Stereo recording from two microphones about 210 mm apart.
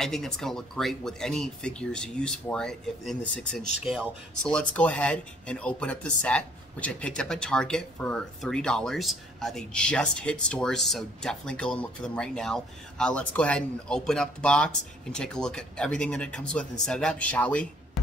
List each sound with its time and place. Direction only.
0.0 s speech: centre (ahead or behind)